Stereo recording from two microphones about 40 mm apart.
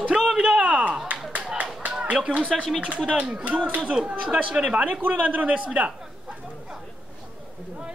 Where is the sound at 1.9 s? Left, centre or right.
Right.